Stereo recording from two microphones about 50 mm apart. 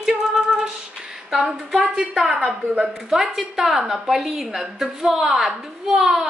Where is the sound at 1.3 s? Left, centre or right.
Centre.